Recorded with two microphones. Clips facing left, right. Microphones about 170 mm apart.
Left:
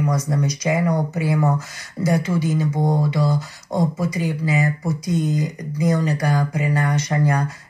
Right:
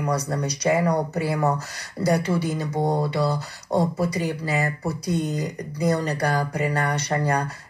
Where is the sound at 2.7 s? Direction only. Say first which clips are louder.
Left 2 dB; 10° right (ahead or behind).